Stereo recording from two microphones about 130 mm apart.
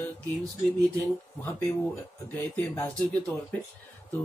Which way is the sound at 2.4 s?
15° left (ahead or behind).